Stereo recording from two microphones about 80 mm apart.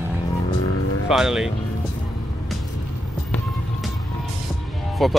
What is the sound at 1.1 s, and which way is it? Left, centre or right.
Speech, centre.